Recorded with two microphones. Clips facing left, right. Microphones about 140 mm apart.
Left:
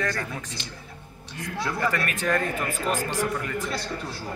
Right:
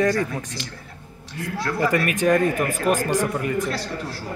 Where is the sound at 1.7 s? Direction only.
20° right (ahead or behind).